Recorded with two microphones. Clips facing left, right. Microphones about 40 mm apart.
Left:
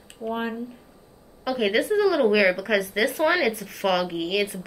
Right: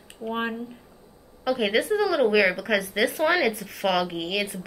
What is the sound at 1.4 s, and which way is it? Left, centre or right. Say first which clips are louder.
A woman's voice: even; centre.